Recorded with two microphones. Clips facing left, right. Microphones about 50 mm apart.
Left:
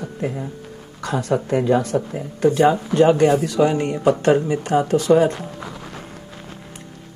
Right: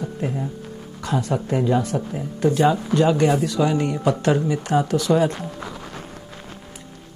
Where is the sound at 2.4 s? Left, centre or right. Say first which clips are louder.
Left 3 dB; left.